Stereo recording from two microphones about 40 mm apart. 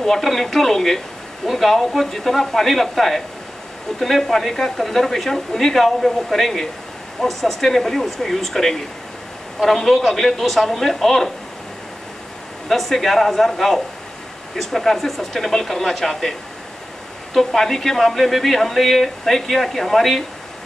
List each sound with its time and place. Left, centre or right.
0.0 s speech: centre
12.6 s speech: centre